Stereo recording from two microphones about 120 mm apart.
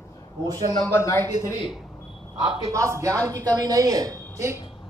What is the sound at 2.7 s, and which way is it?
A woman's voice, 25° right (ahead or behind).